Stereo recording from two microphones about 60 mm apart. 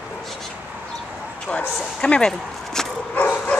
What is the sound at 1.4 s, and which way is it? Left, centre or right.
Speech, centre.